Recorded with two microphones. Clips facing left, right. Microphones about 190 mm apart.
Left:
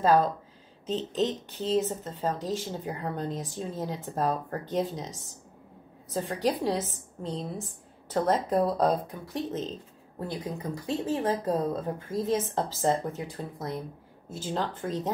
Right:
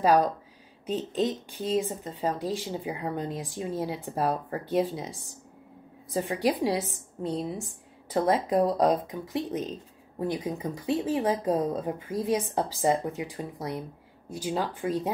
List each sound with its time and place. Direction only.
0.0 s a woman's voice: 15° right (ahead or behind)